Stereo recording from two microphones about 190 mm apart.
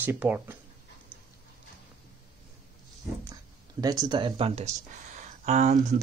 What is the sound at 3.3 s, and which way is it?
Speech, 20° right (ahead or behind).